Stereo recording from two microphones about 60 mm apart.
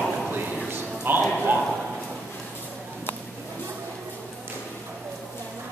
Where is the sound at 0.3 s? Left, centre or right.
Right.